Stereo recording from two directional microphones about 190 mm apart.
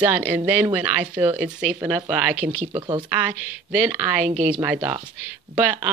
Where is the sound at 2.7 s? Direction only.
25° right (ahead or behind).